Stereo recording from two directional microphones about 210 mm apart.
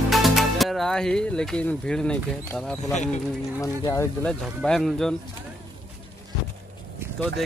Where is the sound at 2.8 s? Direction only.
35° left (ahead or behind).